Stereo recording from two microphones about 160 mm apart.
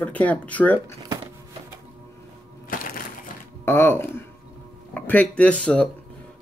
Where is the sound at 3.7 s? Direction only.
15° left (ahead or behind).